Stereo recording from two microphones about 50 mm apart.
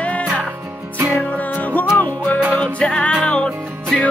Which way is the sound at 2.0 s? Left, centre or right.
Left.